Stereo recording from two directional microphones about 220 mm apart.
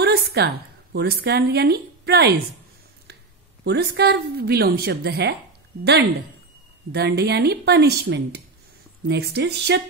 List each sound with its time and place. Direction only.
0.0 s a sound: 45° right (ahead or behind)
0.9 s a woman's voice: 50° right (ahead or behind)
3.6 s a woman's voice: 50° right (ahead or behind)
6.9 s a woman's voice: 50° right (ahead or behind)